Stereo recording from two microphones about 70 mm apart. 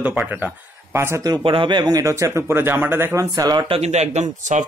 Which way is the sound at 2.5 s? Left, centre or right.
Right.